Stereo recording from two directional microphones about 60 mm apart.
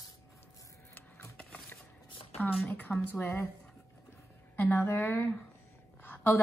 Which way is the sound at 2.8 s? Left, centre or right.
Left.